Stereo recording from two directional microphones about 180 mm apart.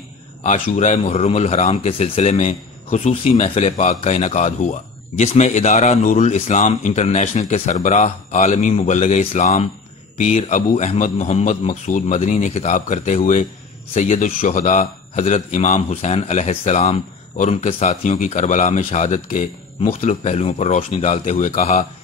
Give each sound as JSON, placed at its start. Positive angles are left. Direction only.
{"t": 0.4, "sound": "a man's voice", "side_deg": 40}